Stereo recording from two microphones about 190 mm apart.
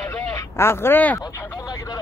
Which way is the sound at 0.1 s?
15° left (ahead or behind).